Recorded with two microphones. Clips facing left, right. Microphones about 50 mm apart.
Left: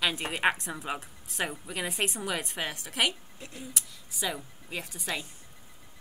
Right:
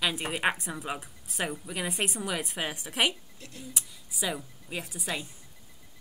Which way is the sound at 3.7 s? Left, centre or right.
Centre.